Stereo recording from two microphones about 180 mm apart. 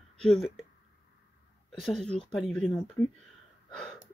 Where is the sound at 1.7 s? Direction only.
Centre (ahead or behind).